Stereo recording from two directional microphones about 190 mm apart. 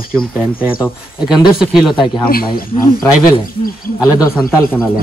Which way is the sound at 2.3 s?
50° left (ahead or behind).